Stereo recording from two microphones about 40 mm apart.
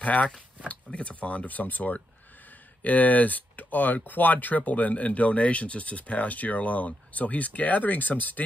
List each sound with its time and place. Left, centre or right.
0.0 s speech: left